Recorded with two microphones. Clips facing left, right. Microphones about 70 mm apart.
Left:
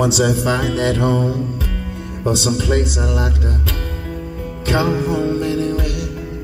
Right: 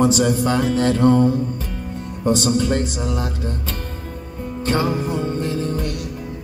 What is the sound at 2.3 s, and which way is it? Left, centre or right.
Music, right.